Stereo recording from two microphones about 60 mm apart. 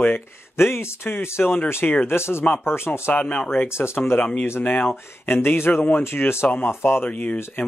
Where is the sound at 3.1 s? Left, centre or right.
Left.